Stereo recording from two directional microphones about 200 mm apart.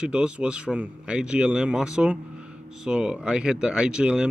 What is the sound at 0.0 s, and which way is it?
Speech, 5° right (ahead or behind).